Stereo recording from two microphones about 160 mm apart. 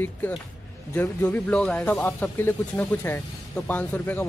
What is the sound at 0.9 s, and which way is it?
Speech, 15° left (ahead or behind).